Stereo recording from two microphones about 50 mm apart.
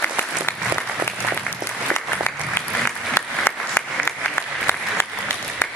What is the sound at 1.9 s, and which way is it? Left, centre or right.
Applause, left.